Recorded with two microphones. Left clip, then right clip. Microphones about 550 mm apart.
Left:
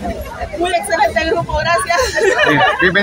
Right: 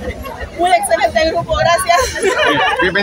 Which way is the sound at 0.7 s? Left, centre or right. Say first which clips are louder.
Right 2 dB; right.